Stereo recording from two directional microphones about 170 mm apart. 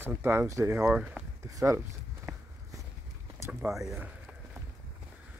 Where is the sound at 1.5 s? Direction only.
20° right (ahead or behind).